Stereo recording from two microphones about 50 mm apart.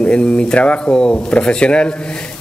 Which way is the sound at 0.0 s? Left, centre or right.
Left.